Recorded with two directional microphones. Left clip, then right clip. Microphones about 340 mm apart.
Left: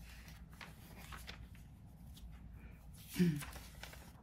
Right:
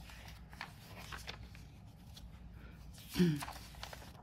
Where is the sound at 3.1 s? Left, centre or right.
Centre.